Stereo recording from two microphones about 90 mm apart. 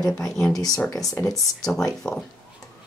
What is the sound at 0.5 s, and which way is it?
Speech, 45° left (ahead or behind).